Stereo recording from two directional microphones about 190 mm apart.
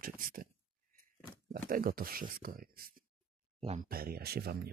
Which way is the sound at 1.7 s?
50° right (ahead or behind).